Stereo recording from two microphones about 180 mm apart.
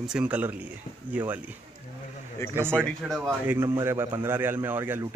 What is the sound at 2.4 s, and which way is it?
Speech, 15° left (ahead or behind).